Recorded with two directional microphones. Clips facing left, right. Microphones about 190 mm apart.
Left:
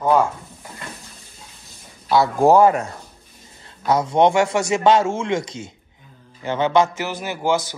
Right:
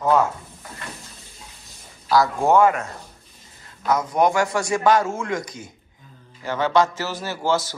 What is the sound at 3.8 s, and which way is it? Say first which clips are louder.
A man's voice: left 3 dB; 30° left (ahead or behind).